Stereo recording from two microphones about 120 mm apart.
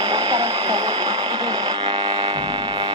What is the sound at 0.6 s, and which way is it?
Mains hum, 35° right (ahead or behind).